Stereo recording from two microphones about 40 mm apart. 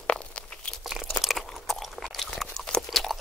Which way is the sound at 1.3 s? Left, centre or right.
Centre.